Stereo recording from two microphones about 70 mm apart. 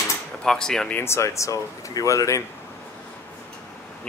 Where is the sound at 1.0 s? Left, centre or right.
Left.